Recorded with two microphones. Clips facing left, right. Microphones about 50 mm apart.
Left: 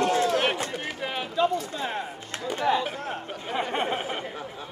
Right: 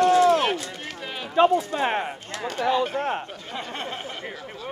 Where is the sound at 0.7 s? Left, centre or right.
Centre.